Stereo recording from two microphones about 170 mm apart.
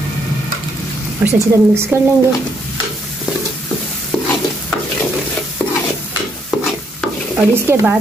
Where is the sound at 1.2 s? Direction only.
10° right (ahead or behind).